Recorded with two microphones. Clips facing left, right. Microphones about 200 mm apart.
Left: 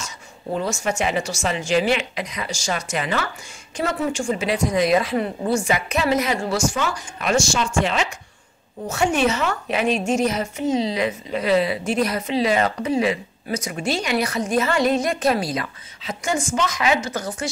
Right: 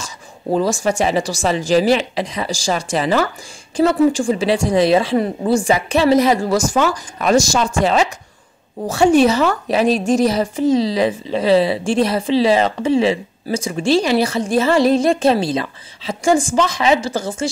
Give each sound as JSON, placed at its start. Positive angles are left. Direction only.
{"t": 0.0, "sound": "a woman's voice", "side_deg": -35}